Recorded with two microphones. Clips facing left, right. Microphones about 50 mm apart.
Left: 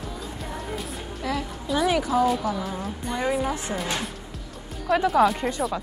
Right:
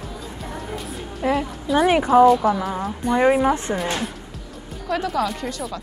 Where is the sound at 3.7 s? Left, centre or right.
Centre.